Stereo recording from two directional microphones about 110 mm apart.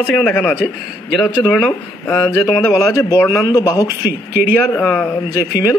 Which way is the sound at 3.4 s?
35° left (ahead or behind).